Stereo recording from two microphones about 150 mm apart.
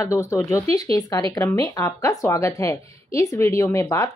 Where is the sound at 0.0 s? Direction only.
20° left (ahead or behind).